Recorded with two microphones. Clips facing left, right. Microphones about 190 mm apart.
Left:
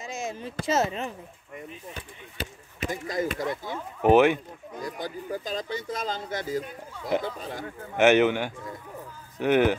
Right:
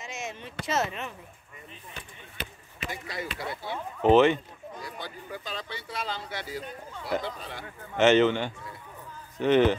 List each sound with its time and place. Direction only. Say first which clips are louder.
0.0 s speech: left 4 dB; 35° left (ahead or behind)
2.8 s speech: left 7 dB; 45° left (ahead or behind)
4.0 s a man's voice: left 1 dB; 10° left (ahead or behind)
5.0 s speech: left 6 dB; 40° left (ahead or behind)
7.9 s a man's voice: left 1 dB; 15° left (ahead or behind)